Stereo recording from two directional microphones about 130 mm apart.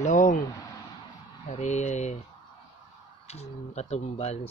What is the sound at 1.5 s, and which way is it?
Speech, 65° left (ahead or behind).